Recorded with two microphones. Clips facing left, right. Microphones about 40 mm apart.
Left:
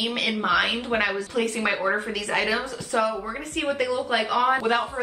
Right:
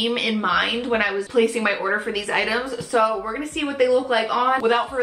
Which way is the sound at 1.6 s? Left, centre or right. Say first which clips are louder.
Right 2 dB; right.